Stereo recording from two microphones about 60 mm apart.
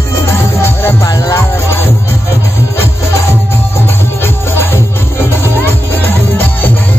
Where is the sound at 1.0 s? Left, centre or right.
Left.